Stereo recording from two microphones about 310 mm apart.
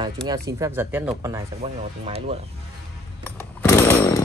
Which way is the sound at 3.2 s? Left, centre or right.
Centre.